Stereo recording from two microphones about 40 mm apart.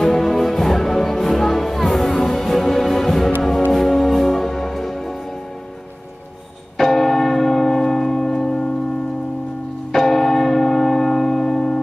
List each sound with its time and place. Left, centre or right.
0.0 s music: centre
6.8 s church bell: centre
9.9 s church bell: centre